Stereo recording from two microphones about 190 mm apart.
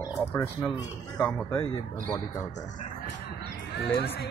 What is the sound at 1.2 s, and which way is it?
Speech, 5° left (ahead or behind).